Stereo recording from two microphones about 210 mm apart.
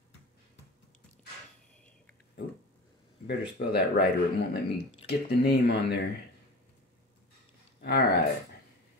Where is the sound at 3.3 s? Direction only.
50° left (ahead or behind).